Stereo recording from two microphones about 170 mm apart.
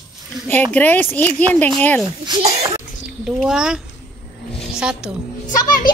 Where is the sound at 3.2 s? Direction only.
Centre (ahead or behind).